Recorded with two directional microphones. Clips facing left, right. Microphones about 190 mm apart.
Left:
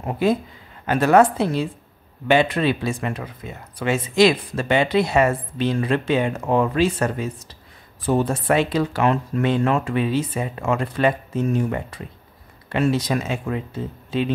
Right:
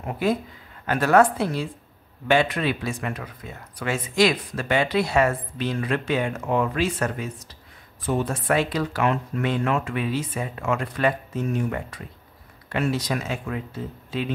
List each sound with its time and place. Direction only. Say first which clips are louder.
0.0 s speech: left 4 dB; 25° left (ahead or behind)